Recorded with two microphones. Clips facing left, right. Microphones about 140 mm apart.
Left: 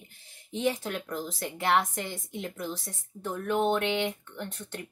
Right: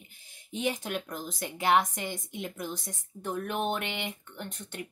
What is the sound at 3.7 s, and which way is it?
Speech, 15° right (ahead or behind).